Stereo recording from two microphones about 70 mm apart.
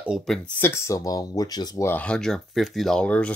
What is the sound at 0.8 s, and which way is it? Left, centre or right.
Speech, left.